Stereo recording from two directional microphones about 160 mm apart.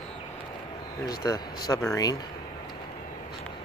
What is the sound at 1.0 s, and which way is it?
Speech, 25° left (ahead or behind).